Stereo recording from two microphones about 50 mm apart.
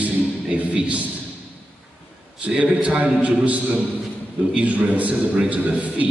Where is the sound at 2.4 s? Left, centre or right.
Right.